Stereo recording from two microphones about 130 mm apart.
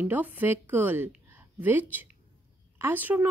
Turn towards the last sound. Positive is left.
turn(degrees=-15)  # may be behind; listen again after turning